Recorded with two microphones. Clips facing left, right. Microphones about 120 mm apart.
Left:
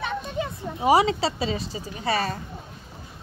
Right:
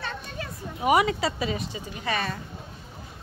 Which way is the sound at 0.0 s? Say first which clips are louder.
Left 7 dB; 20° left (ahead or behind).